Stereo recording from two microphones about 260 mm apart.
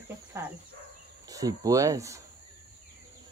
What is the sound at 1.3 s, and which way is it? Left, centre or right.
Speech, centre.